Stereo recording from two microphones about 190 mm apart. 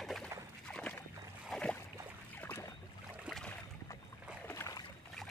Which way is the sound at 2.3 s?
10° left (ahead or behind).